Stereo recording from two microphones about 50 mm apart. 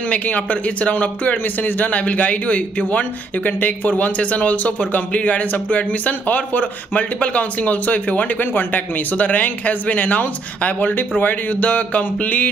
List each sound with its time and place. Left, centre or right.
0.1 s speech: left